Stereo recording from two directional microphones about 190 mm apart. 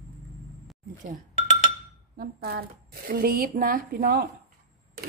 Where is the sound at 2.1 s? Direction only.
50° right (ahead or behind).